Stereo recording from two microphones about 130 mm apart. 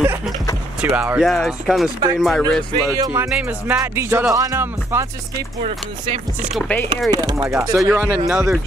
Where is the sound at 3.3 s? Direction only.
10° right (ahead or behind).